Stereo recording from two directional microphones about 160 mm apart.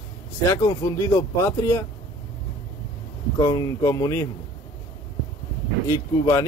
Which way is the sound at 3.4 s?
25° left (ahead or behind).